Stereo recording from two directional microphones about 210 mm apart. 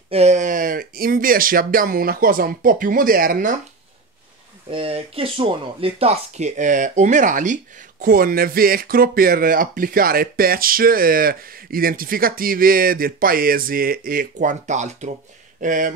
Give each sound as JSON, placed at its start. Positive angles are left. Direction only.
{"t": 0.1, "sound": "speech", "side_deg": -30}
{"t": 4.6, "sound": "speech", "side_deg": -25}